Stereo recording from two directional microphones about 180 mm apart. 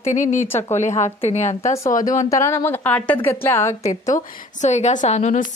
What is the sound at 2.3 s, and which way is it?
Speech, 15° left (ahead or behind).